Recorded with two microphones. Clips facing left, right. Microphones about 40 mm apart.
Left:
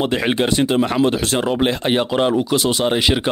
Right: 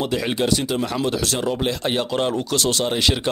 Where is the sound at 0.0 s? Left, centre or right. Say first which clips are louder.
Left 4 dB; left.